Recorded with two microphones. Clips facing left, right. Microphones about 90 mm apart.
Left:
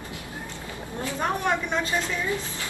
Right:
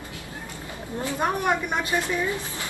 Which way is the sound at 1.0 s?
15° right (ahead or behind).